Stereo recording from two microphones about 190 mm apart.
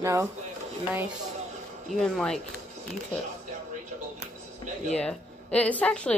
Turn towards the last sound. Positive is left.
turn(degrees=5)  # may be behind; listen again after turning